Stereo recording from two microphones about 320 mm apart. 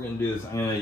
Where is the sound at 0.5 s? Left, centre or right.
Centre.